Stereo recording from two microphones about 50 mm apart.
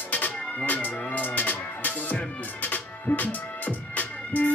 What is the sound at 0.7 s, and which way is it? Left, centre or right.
Music, left.